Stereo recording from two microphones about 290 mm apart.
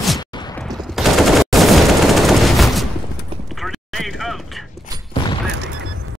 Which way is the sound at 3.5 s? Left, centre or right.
Centre.